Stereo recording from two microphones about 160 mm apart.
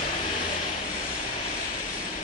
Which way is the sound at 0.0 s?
55° left (ahead or behind).